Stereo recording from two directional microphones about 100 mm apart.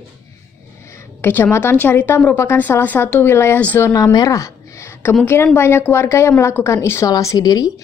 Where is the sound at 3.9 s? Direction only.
35° left (ahead or behind).